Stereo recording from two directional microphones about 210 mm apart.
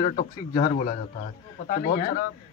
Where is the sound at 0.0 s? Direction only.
35° left (ahead or behind).